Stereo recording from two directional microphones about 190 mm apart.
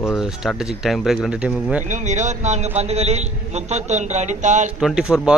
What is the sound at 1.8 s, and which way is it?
A man's voice, 40° right (ahead or behind).